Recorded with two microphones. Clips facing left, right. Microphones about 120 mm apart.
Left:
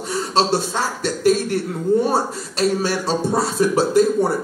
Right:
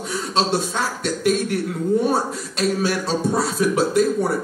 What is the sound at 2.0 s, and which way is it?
A man's voice, centre (ahead or behind).